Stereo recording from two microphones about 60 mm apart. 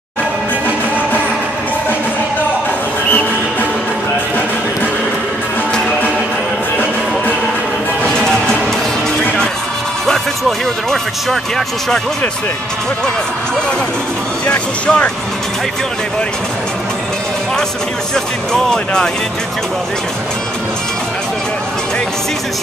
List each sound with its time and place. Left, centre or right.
8.0 s music: centre
10.9 s speech: centre
14.5 s speech: left
18.1 s speech: centre